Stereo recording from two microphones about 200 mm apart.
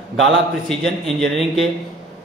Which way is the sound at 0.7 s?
Centre (ahead or behind).